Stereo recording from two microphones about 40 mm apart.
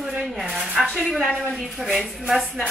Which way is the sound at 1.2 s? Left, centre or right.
Left.